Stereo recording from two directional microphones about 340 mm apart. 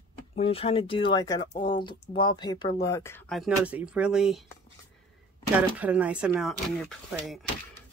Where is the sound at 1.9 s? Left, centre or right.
Centre.